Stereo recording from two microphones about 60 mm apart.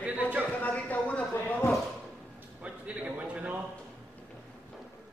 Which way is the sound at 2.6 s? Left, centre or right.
Right.